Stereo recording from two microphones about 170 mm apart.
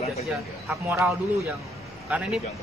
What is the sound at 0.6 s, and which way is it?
A man's voice, 10° right (ahead or behind).